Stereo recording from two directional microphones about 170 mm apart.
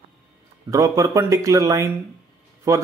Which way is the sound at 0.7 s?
20° right (ahead or behind).